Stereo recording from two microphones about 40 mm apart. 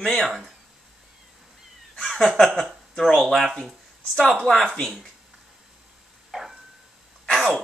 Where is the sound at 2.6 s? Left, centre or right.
Centre.